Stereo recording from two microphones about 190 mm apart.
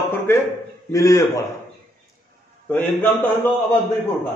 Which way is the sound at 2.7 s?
10° left (ahead or behind).